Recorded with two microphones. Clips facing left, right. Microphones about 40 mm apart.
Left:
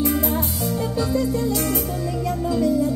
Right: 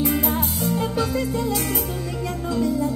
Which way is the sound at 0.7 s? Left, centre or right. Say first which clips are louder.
Left 2 dB; right.